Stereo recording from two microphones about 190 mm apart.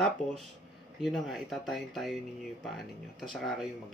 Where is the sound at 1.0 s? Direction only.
Centre (ahead or behind).